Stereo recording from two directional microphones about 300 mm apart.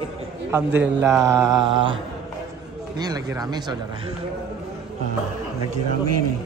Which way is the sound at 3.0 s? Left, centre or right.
Centre.